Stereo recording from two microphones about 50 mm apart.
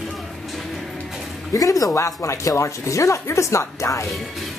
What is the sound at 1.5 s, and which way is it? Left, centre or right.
Speech, left.